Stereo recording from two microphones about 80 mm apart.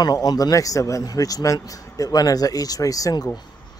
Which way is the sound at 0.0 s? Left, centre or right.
Left.